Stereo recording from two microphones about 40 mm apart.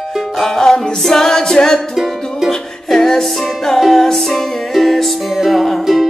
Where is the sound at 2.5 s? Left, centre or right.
Centre.